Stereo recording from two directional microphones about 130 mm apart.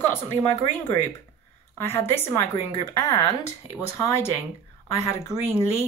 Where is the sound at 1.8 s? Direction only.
20° left (ahead or behind).